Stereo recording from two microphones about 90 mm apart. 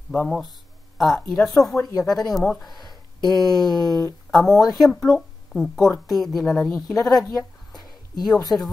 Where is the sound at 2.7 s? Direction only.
50° left (ahead or behind).